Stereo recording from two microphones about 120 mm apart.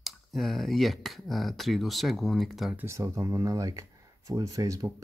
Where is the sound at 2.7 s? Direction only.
25° right (ahead or behind).